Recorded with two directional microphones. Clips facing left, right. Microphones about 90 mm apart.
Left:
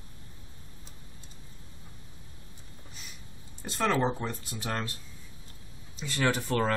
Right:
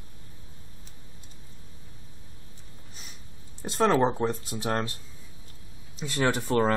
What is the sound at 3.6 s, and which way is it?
Speech, 35° right (ahead or behind).